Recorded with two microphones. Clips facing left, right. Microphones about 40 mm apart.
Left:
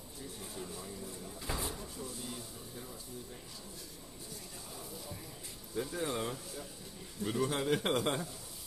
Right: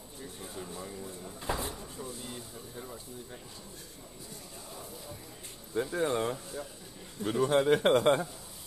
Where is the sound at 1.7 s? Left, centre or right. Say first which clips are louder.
Right 2 dB; centre.